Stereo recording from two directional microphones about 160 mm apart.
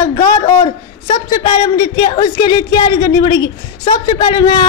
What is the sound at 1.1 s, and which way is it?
A man's voice, 25° left (ahead or behind).